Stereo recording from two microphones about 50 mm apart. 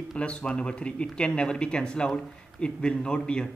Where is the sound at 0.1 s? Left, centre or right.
Left.